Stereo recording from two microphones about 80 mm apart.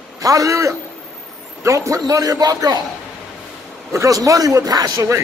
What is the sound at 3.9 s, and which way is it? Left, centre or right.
A man's voice, right.